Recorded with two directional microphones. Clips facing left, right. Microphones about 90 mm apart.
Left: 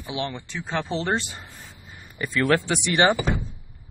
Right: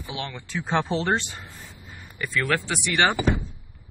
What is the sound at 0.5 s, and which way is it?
Speech, centre (ahead or behind).